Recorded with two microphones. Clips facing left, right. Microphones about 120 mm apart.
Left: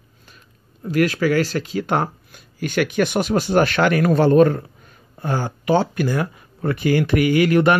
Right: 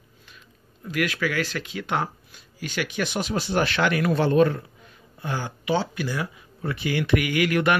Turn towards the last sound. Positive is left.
turn(degrees=35)  # may be behind; listen again after turning